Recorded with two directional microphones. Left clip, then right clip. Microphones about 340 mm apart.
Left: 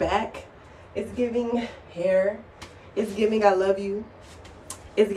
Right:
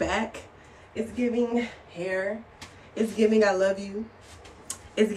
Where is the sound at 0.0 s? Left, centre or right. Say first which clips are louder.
Left 3 dB; centre.